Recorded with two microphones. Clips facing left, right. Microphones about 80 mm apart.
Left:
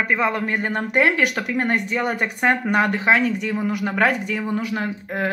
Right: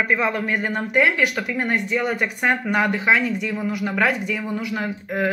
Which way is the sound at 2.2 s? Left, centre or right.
Left.